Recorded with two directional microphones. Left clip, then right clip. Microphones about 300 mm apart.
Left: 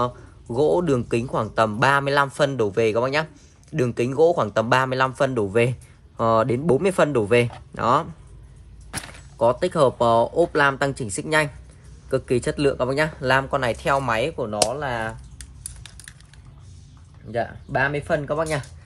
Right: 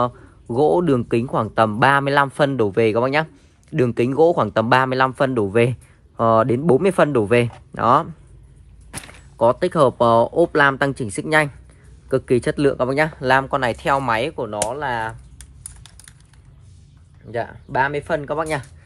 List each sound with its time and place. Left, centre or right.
0.6 s speech: centre
9.4 s speech: centre
17.3 s speech: centre